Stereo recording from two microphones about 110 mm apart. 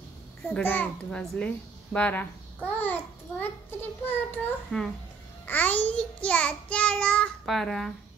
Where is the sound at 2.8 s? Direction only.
15° left (ahead or behind).